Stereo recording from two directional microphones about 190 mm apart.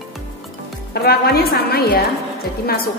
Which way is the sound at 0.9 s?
55° left (ahead or behind).